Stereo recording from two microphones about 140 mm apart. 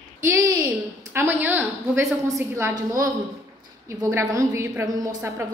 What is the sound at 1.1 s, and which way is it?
A woman's voice, 15° right (ahead or behind).